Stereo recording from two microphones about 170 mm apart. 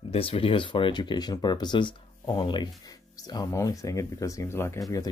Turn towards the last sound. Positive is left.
turn(degrees=15)  # may be behind; listen again after turning